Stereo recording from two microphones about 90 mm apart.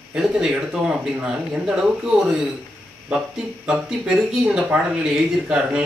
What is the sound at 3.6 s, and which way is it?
Speech, 10° right (ahead or behind).